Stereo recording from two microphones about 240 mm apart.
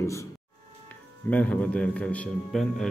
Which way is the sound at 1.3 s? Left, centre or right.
Centre.